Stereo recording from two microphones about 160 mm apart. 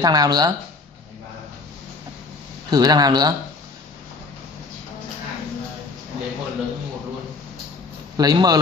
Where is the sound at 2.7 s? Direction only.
25° right (ahead or behind).